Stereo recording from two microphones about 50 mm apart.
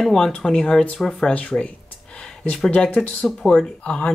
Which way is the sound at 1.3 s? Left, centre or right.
Left.